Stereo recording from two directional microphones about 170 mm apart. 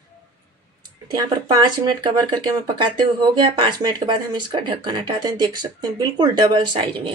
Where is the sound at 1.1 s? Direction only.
25° right (ahead or behind).